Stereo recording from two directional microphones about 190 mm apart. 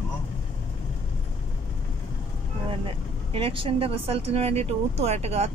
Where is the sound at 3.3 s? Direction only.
30° right (ahead or behind).